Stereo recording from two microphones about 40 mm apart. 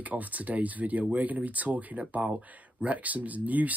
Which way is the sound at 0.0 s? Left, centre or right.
Right.